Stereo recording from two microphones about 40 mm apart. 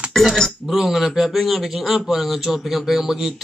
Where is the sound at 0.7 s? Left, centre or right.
Centre.